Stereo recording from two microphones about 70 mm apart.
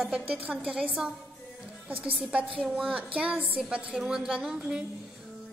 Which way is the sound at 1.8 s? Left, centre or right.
Right.